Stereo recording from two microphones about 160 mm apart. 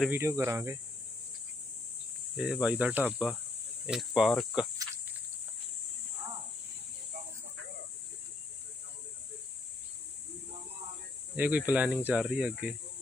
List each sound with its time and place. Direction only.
0.1 s speech: 15° right (ahead or behind)
2.3 s speech: 5° right (ahead or behind)
3.1 s cricket: centre (ahead or behind)
11.3 s speech: 10° right (ahead or behind)